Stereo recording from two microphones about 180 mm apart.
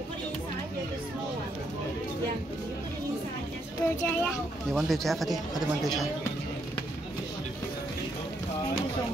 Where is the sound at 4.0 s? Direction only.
5° left (ahead or behind).